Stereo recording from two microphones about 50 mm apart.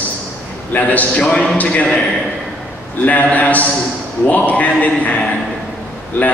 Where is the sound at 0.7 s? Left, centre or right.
Left.